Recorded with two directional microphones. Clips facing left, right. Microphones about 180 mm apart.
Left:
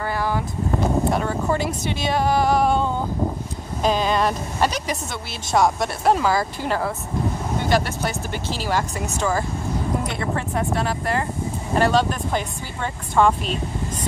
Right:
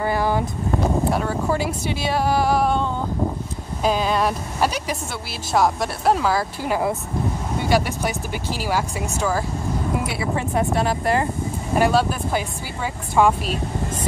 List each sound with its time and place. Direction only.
0.0 s vehicle: 15° right (ahead or behind)
1.1 s speech: 5° right (ahead or behind)
3.8 s speech: 5° right (ahead or behind)
10.0 s speech: 5° right (ahead or behind)